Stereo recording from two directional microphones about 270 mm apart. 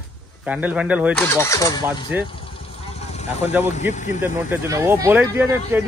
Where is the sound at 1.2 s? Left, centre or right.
Centre.